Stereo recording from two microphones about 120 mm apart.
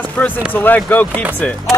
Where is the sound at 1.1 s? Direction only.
15° right (ahead or behind).